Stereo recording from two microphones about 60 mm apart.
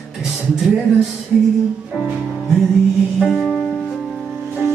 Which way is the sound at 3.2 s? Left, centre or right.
Centre.